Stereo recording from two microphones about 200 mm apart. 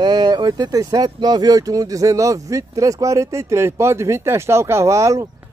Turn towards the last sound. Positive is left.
turn(degrees=-15)  # may be behind; listen again after turning